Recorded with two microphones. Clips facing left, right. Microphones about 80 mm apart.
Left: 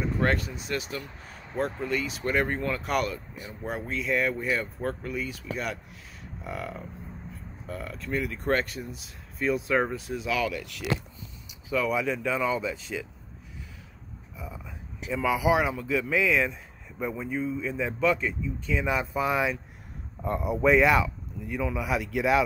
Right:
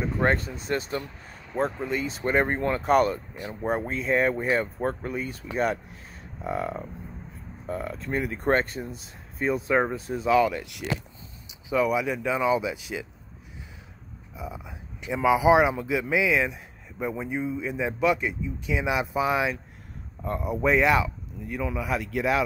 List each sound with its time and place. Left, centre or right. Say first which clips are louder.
0.0 s speech: right 2 dB; right
1.6 s speech: right 2 dB; right
11.4 s a sound: right 4 dB; right
11.9 s a man's voice: right 2 dB; centre
14.3 s a sound: right 4 dB; centre
15.1 s a man's voice: right 5 dB; right; by 22.4 s centre